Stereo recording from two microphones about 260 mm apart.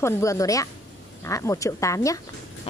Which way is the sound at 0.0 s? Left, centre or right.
Centre.